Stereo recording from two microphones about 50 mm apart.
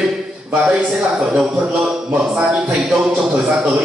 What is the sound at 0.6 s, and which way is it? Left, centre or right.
A man's voice, centre.